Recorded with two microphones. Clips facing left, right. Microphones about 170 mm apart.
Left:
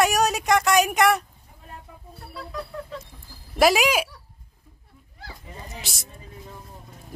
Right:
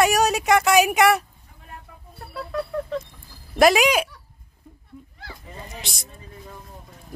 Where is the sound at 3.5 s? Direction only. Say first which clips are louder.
Right 2 dB; 5° left (ahead or behind).